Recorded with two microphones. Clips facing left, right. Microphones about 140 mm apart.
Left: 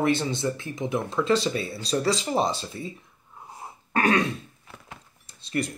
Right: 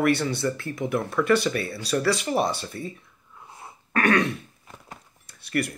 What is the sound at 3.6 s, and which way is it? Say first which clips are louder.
Cough: even; 30° left (ahead or behind).